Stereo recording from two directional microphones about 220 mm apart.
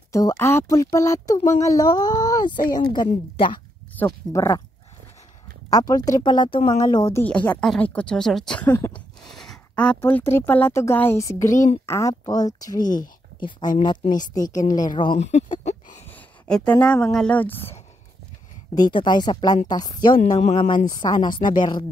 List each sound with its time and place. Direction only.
0.1 s speech: 15° left (ahead or behind)
5.7 s speech: 15° left (ahead or behind)
9.2 s a woman's voice: centre (ahead or behind); by 16.0 s 35° left (ahead or behind)
16.1 s speech: 5° left (ahead or behind)
18.8 s a woman's voice: 20° left (ahead or behind)
20.2 s a woman's voice: 30° left (ahead or behind)